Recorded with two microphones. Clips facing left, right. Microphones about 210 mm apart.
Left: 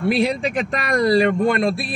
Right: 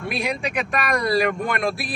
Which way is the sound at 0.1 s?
30° left (ahead or behind).